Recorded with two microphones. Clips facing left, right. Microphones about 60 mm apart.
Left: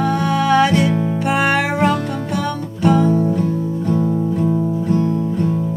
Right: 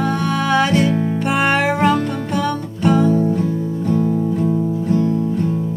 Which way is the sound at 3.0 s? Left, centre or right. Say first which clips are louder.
Even; left.